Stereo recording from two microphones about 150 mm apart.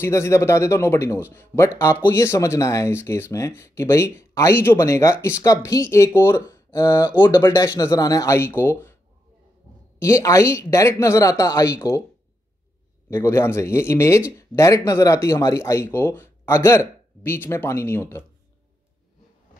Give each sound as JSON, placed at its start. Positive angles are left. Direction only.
{"t": 0.0, "sound": "speech", "side_deg": 20}
{"t": 9.9, "sound": "speech", "side_deg": 20}
{"t": 13.1, "sound": "speech", "side_deg": 15}